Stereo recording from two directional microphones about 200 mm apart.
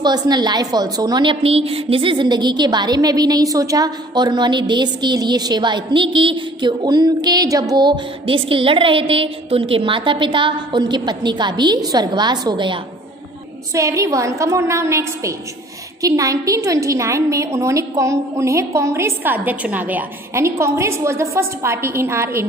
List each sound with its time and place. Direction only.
0.0 s a woman's voice: 20° right (ahead or behind)